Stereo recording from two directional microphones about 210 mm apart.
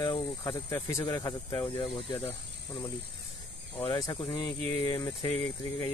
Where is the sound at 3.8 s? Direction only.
20° left (ahead or behind).